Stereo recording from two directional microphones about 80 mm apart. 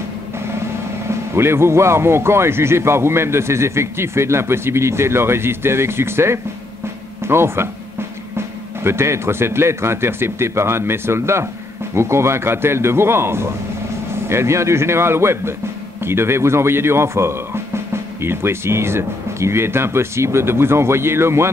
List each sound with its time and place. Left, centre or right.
1.3 s a man's voice: right
8.8 s a man's voice: right